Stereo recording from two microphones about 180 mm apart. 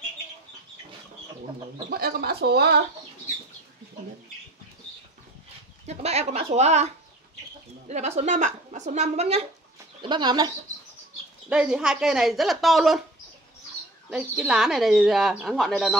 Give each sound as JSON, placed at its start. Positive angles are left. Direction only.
{"t": 1.9, "sound": "speech", "side_deg": -60}
{"t": 5.9, "sound": "a woman's voice", "side_deg": -35}
{"t": 7.9, "sound": "a woman's voice", "side_deg": -40}
{"t": 10.0, "sound": "speech", "side_deg": -25}
{"t": 11.4, "sound": "speech", "side_deg": -5}
{"t": 14.1, "sound": "speech", "side_deg": -5}